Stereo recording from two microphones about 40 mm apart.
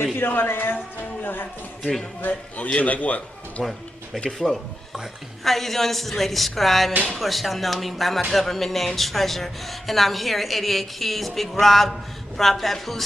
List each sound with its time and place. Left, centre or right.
0.2 s a man's voice: left
2.2 s a man's voice: left
4.3 s speech: centre